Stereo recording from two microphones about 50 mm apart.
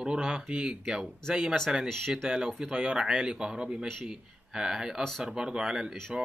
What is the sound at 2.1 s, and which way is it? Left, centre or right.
Speech, centre.